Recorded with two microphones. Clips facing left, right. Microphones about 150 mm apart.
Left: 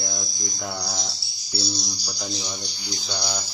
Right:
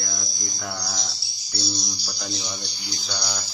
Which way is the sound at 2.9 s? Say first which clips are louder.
Left 2 dB; 20° left (ahead or behind).